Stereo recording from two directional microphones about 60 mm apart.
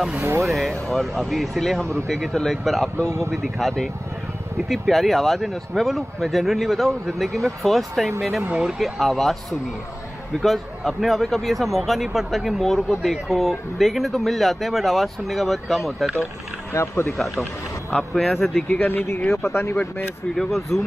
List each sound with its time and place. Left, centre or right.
0.4 s speech: centre
8.4 s speech: right
8.6 s speech: centre
16.7 s speech: left
18.1 s speech: centre
18.7 s speech: left
20.3 s speech: centre